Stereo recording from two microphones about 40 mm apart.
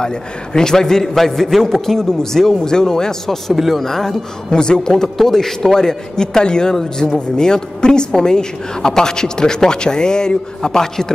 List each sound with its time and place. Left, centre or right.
0.0 s a man's voice: centre
3.5 s speech: centre
3.8 s a man's voice: centre
4.6 s a man's voice: centre